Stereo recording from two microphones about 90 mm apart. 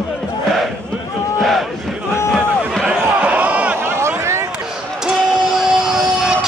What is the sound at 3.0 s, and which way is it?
Basketball bounce, 20° right (ahead or behind).